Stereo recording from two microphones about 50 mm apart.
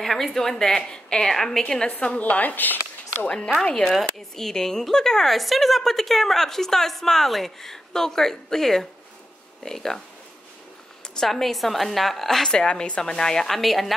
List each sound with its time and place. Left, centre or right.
0.0 s speech: centre
2.0 s a woman's voice: left
3.2 s speech: left
3.8 s speech: centre
11.1 s a woman's voice: centre